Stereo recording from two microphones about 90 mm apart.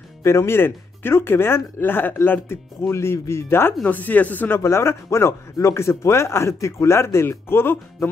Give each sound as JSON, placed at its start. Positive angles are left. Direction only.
{"t": 0.2, "sound": "speech", "side_deg": 30}
{"t": 3.8, "sound": "speech", "side_deg": 20}
{"t": 4.6, "sound": "a man's voice", "side_deg": 30}